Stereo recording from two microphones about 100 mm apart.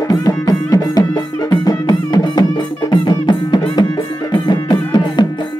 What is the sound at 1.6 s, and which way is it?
Music, 40° left (ahead or behind).